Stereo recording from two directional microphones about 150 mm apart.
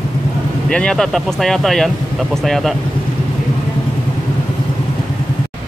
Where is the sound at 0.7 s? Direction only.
5° left (ahead or behind).